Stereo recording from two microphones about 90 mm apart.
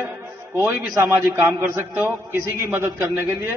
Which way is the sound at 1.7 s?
25° right (ahead or behind).